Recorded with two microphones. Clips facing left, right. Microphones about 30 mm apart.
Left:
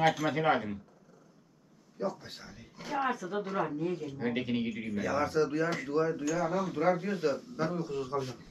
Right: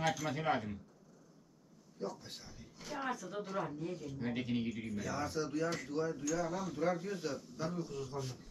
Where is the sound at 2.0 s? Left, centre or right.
Left.